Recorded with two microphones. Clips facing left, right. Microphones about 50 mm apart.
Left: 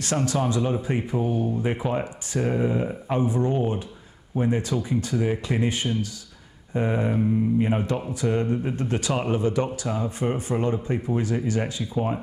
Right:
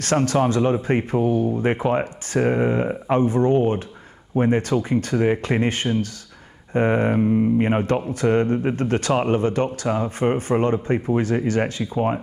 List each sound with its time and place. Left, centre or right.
0.0 s speech: right